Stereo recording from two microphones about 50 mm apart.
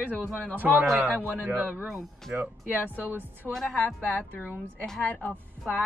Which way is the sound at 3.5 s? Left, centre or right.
Centre.